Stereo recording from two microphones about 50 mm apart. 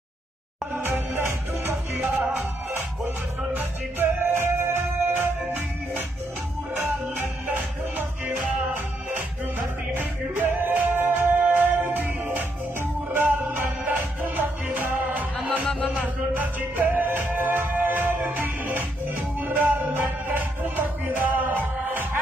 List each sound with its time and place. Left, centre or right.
0.7 s music: right
2.1 s music: right
3.5 s music: right
9.9 s music: right
13.1 s music: right
13.8 s music: right